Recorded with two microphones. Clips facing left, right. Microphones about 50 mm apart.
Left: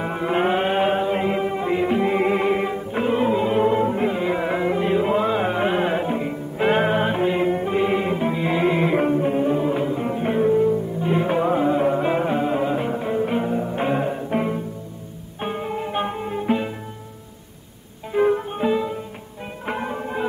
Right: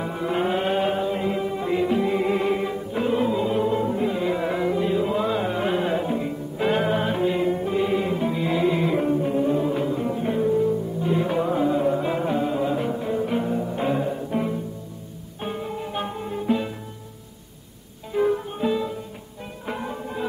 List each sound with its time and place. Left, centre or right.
0.0 s music: left
1.6 s music: left
2.1 s music: left
2.4 s music: left
3.3 s music: left
4.1 s music: left
4.6 s music: left
10.0 s music: left
13.9 s music: left
18.1 s music: left
19.6 s music: left